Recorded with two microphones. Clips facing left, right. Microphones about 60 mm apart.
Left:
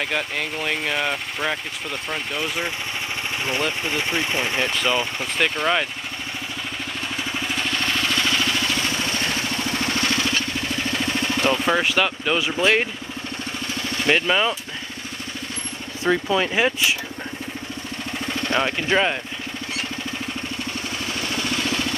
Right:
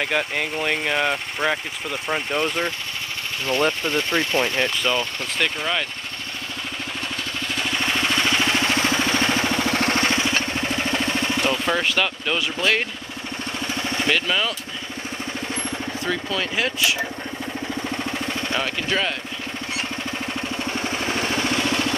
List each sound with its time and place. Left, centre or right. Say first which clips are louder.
0.0 s speech: right 2 dB; centre
3.8 s speech: right 2 dB; centre
7.6 s vehicle: right 3 dB; centre; by 9.7 s right
9.7 s vehicle: right 3 dB; right
10.0 s vehicle: right 1 dB; right
11.4 s speech: left 4 dB; centre
14.0 s speech: left 4 dB; centre
16.0 s speech: left 7 dB; left
18.6 s speech: left 5 dB; left
20.7 s vehicle: right 4 dB; right